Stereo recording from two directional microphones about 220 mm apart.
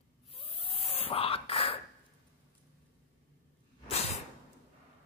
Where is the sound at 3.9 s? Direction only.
30° left (ahead or behind).